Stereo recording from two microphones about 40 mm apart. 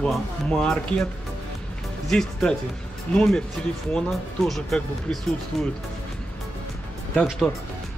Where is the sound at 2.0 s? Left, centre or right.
Centre.